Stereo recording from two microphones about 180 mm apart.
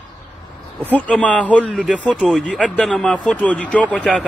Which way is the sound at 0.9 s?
5° left (ahead or behind).